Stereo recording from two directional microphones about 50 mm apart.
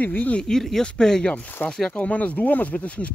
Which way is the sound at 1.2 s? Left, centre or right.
Left.